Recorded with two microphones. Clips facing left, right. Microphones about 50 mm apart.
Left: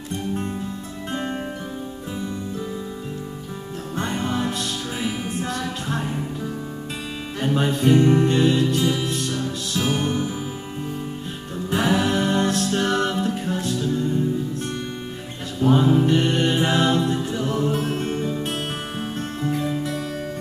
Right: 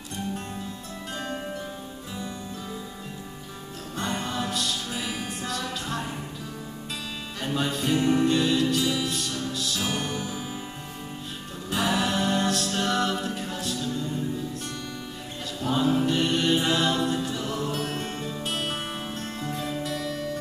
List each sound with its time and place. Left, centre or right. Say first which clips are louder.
3.9 s music: left 5 dB; left
7.3 s music: left 6 dB; left
11.7 s music: left 5 dB; left
15.6 s music: left 6 dB; left
19.4 s music: left 7 dB; centre